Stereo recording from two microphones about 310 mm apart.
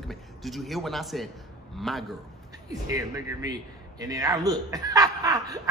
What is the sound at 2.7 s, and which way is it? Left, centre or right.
Speech, centre.